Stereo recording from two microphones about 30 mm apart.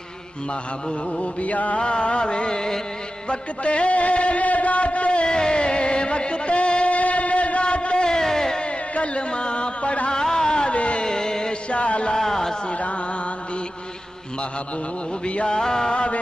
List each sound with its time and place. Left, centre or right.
1.4 s music: left
1.8 s music: left
5.3 s music: left
6.9 s music: left
8.2 s music: centre
8.9 s speech: left
10.2 s a sound: centre
10.7 s a sound: left
11.1 s chant: left
11.7 s a sound: left
12.2 s a sound: centre
15.4 s mantra: left